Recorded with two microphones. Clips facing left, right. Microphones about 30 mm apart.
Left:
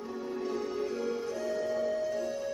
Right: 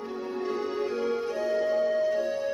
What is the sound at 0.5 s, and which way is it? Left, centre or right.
Music, right.